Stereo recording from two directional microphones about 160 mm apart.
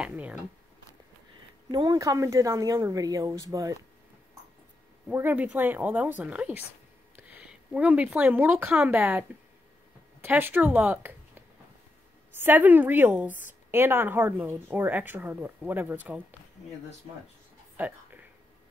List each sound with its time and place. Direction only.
0.0 s speech: 10° right (ahead or behind)
1.7 s a woman's voice: 25° right (ahead or behind)
5.0 s speech: 10° right (ahead or behind)
10.2 s speech: 10° right (ahead or behind)
12.4 s speech: 10° right (ahead or behind)
17.7 s a sound: 10° right (ahead or behind)